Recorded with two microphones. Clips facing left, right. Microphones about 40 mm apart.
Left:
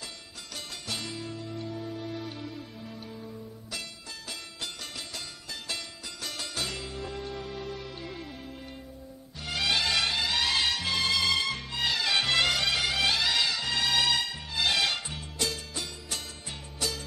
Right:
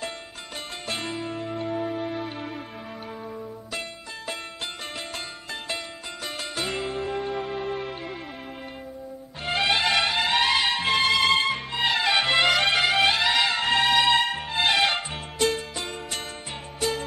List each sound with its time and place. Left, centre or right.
0.8 s music: right
6.2 s music: right
9.4 s music: right
12.5 s music: right